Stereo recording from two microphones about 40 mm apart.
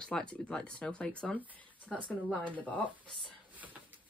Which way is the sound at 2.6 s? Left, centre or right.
Left.